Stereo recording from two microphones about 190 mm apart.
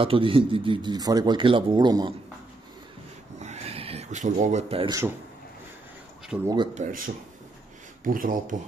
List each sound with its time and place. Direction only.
0.0 s speech: 30° right (ahead or behind)
3.3 s a sound: 35° right (ahead or behind)
6.4 s speech: 25° right (ahead or behind)
6.7 s speech: 40° right (ahead or behind)
8.0 s speech: 45° right (ahead or behind)